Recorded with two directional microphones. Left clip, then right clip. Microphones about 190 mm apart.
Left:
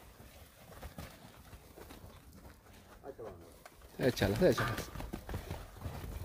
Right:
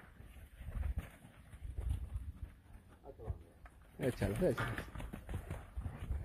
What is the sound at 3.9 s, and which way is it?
Speech, 15° left (ahead or behind).